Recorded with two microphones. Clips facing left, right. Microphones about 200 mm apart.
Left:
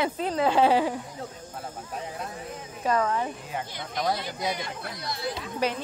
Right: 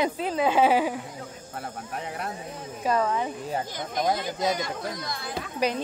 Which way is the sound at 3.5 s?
45° right (ahead or behind).